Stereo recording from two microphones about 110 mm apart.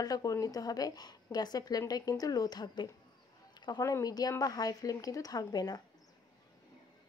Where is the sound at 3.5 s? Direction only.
40° left (ahead or behind).